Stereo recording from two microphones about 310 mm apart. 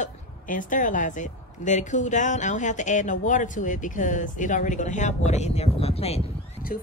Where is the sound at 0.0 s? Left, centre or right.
Left.